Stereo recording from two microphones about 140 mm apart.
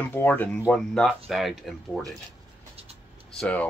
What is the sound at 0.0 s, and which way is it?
Speech, 15° left (ahead or behind).